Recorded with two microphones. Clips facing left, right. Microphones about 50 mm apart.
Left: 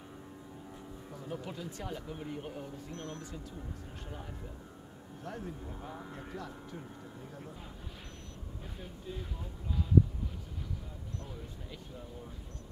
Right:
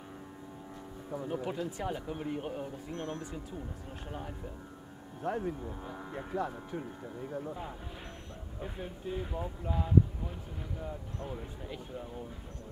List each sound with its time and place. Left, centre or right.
1.1 s speech: right
5.2 s speech: right
5.7 s speech: centre
6.1 s speech: right
11.2 s speech: right